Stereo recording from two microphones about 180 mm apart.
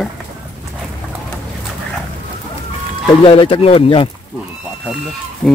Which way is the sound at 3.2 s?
30° left (ahead or behind).